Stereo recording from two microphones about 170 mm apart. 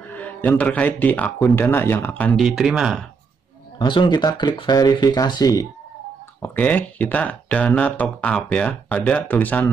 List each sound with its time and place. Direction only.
0.1 s speech: 10° left (ahead or behind)
2.4 s speech: centre (ahead or behind)
3.7 s speech: 25° left (ahead or behind)
6.4 s speech: 10° left (ahead or behind)